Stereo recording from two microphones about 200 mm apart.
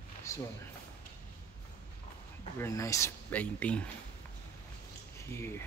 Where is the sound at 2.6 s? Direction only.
15° left (ahead or behind).